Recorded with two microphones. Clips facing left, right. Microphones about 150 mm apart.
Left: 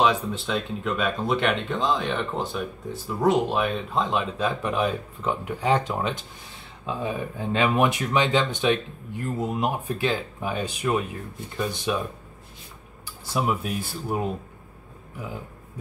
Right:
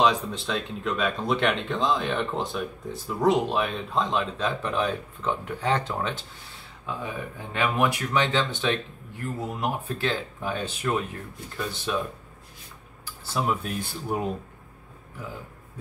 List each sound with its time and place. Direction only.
0.0 s speech: centre (ahead or behind)
13.2 s speech: 10° left (ahead or behind)